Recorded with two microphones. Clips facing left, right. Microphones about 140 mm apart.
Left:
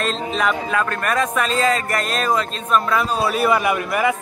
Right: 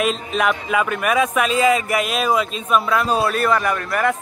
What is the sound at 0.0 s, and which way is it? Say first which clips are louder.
Speech: right 1 dB; 5° right (ahead or behind).